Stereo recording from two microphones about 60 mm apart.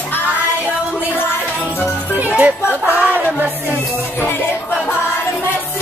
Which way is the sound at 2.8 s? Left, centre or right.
Right.